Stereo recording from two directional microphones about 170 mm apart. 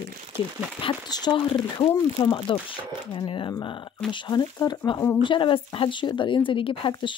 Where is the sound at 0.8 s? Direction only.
25° left (ahead or behind).